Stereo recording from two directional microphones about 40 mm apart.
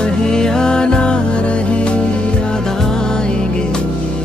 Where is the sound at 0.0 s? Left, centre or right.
Centre.